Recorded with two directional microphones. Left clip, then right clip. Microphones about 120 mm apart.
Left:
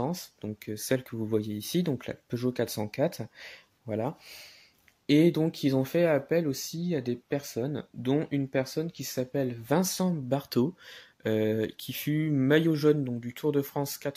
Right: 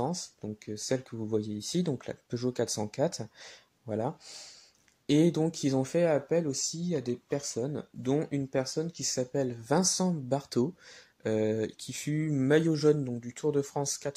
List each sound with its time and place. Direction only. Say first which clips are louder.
0.0 s speech: even; 20° left (ahead or behind)